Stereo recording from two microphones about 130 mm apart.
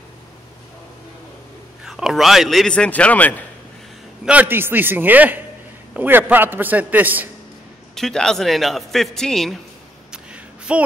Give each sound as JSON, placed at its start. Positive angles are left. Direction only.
{"t": 1.9, "sound": "a man's voice", "side_deg": -5}
{"t": 4.3, "sound": "a man's voice", "side_deg": -15}
{"t": 7.9, "sound": "a man's voice", "side_deg": 5}
{"t": 10.1, "sound": "a sound", "side_deg": -10}